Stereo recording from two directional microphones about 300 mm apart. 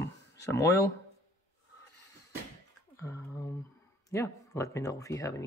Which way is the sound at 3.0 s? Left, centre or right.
Centre.